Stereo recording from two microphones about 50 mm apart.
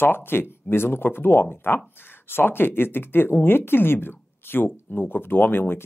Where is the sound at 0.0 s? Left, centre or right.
Left.